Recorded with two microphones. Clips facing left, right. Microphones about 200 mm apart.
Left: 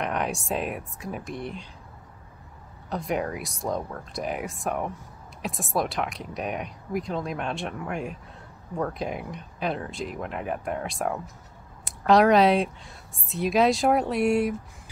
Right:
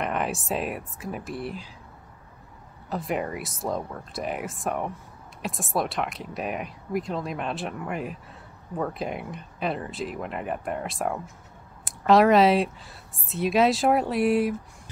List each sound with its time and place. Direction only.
0.0 s speech: centre (ahead or behind)
2.9 s speech: centre (ahead or behind)